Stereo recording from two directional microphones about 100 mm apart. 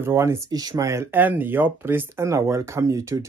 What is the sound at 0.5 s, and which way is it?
Speech, 40° right (ahead or behind).